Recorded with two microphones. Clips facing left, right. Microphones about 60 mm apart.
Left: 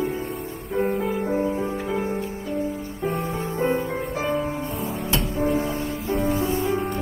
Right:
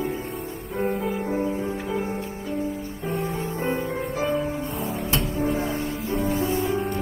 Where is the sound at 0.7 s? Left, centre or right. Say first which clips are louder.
Left 2 dB; centre.